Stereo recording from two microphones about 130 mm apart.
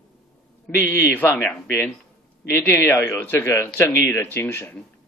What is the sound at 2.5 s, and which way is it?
A man's voice, 20° left (ahead or behind).